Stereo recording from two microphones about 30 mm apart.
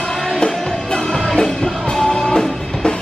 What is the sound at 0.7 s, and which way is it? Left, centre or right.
Music, left.